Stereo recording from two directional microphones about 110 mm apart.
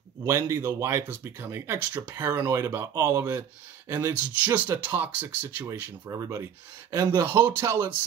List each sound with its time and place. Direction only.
0.2 s speech: 25° right (ahead or behind)
6.0 s speech: 30° right (ahead or behind)